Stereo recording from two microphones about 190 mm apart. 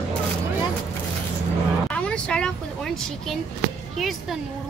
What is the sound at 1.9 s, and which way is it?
Vehicle, 5° left (ahead or behind).